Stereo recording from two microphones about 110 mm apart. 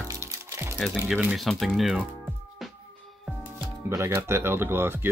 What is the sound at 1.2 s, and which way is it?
Speech, centre (ahead or behind).